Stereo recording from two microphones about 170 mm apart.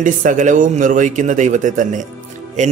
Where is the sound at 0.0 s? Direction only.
50° right (ahead or behind).